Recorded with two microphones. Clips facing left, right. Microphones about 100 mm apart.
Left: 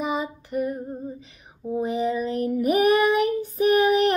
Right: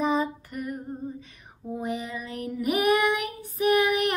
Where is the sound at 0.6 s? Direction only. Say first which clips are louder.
Left 7 dB; 30° left (ahead or behind).